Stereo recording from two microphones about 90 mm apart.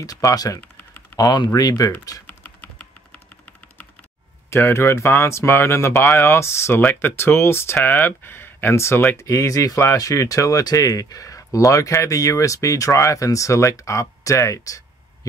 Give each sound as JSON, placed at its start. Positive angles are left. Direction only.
{"t": 0.0, "sound": "speech", "side_deg": 40}
{"t": 2.4, "sound": "typing", "side_deg": 20}
{"t": 4.5, "sound": "speech", "side_deg": 30}